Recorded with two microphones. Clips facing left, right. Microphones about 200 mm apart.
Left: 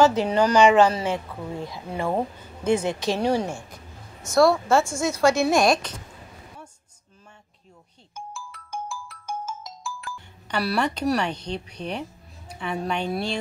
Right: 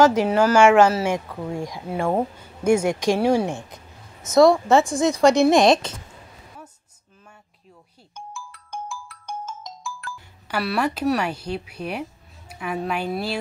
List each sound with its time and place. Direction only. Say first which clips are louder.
0.0 s a woman's voice: right 2 dB; 10° right (ahead or behind)
9.2 s ringtone: left 1 dB; 5° left (ahead or behind)
10.5 s speech: right 1 dB; 5° right (ahead or behind)